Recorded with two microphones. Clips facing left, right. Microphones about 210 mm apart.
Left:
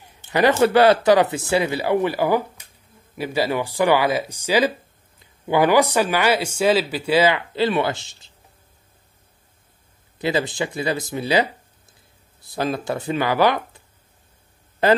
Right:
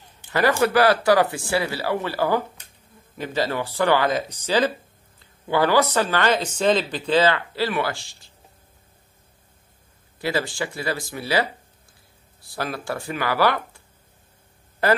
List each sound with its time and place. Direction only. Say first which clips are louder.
0.3 s speech: left 3 dB; 20° left (ahead or behind)
10.1 s speech: left 3 dB; 20° left (ahead or behind)